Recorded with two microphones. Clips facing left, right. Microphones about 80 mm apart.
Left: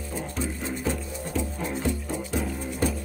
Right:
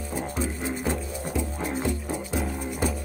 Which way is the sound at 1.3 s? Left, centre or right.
Centre.